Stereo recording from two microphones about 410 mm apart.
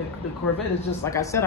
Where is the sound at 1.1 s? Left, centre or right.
Centre.